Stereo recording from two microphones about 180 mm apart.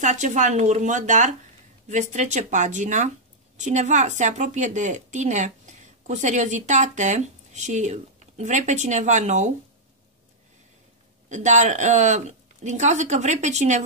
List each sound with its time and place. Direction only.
0.0 s a woman's voice: 45° right (ahead or behind)
11.2 s a woman's voice: 40° right (ahead or behind)